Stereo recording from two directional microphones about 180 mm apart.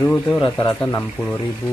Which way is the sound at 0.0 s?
5° left (ahead or behind).